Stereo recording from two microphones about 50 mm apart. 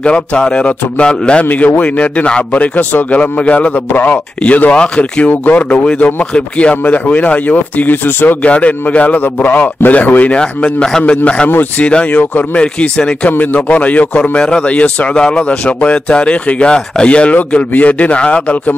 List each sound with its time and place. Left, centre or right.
0.0 s a man's voice: left
1.4 s a man's voice: left
4.4 s a man's voice: left
5.3 s a man's voice: left
5.6 s a man's voice: left
6.8 s a man's voice: left
8.4 s a man's voice: left
10.4 s a man's voice: centre; by 12.4 s left
12.5 s a man's voice: centre
13.3 s a man's voice: left